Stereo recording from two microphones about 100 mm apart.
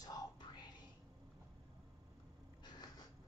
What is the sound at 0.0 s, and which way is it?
Whispering, 40° left (ahead or behind).